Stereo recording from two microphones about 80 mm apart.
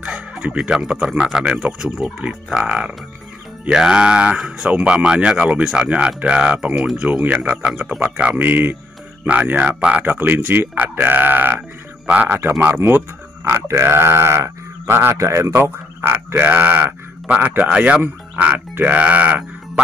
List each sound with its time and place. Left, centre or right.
0.0 s speech: centre
15.1 s speech: right; by 19.8 s centre